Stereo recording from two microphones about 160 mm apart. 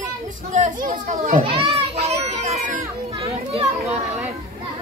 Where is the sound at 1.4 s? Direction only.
35° right (ahead or behind).